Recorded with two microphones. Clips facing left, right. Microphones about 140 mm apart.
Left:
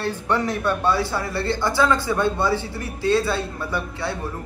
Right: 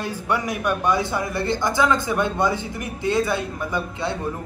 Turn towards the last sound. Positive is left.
turn(degrees=-15)  # may be behind; listen again after turning